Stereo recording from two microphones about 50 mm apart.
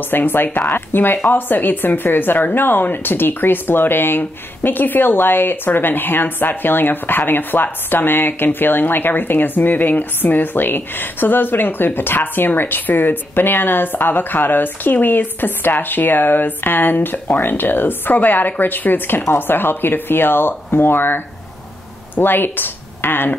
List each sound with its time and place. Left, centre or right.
0.1 s speech: left